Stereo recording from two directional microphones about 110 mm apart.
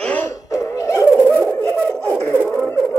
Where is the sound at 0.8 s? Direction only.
25° left (ahead or behind).